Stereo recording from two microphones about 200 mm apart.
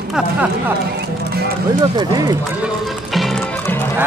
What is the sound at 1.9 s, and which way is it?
Speech, 20° right (ahead or behind).